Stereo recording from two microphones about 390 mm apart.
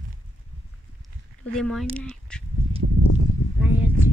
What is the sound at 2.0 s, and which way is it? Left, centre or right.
Duck, centre.